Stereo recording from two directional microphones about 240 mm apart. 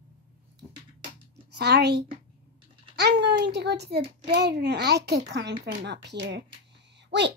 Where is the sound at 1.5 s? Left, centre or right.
Right.